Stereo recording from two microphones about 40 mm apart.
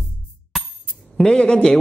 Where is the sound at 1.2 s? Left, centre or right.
Left.